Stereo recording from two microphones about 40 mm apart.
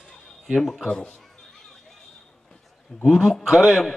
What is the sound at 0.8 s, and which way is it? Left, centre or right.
Speech, left.